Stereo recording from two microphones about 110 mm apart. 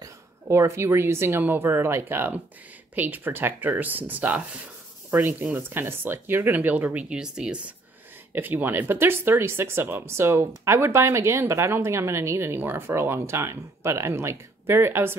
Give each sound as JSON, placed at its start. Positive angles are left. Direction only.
{"t": 0.0, "sound": "speech", "side_deg": -25}
{"t": 8.3, "sound": "speech", "side_deg": -20}